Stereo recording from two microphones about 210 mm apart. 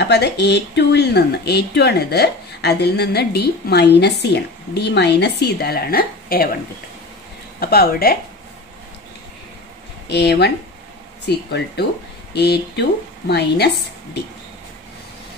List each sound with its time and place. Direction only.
0.0 s speech: 50° left (ahead or behind)
7.6 s speech: 45° left (ahead or behind)
10.0 s speech: 50° left (ahead or behind)